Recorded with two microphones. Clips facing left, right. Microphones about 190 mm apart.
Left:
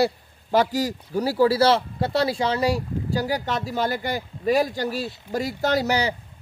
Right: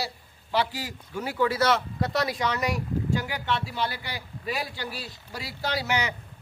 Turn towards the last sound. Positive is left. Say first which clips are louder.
# left 7 dB
turn(degrees=35)  # may be behind; listen again after turning